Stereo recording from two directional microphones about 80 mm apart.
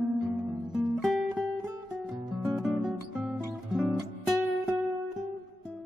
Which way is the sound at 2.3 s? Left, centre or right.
Centre.